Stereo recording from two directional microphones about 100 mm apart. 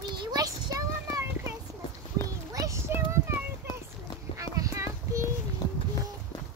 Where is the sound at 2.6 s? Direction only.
30° right (ahead or behind).